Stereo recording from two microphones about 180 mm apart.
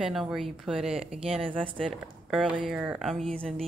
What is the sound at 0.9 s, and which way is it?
Speech, 35° right (ahead or behind).